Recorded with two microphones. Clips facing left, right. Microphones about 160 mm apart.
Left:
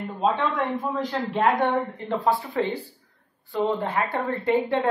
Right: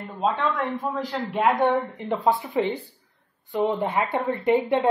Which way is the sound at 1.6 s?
20° right (ahead or behind).